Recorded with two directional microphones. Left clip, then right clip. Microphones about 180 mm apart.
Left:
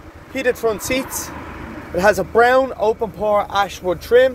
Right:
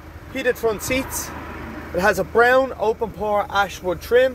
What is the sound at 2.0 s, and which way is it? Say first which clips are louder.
Speech: left 3 dB; 10° left (ahead or behind).